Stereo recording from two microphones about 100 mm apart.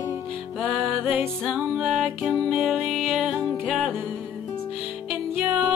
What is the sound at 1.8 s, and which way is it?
Music, 5° right (ahead or behind).